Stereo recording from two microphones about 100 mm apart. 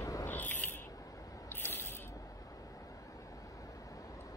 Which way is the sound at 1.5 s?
20° left (ahead or behind).